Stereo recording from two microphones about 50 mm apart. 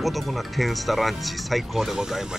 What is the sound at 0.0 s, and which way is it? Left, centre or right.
Speech, centre.